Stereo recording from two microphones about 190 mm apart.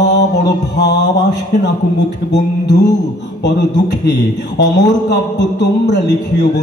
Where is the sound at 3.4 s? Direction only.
65° left (ahead or behind).